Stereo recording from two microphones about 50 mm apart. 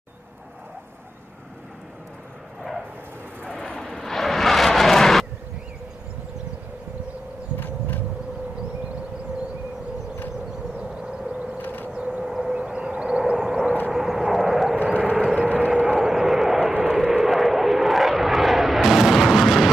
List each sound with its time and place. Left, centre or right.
3.4 s vehicle: centre
10.8 s civil defense siren: centre
11.5 s a sound: left
11.9 s a sound: centre
12.6 s civil defense siren: right
13.9 s vehicle: centre
14.8 s vehicle: right
15.1 s vehicle: centre
15.4 s a sound: right
15.7 s vehicle: centre